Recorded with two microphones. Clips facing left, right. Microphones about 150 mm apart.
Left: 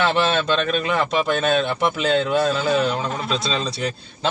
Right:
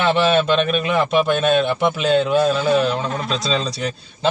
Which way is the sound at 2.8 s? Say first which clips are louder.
Right 2 dB; 35° right (ahead or behind).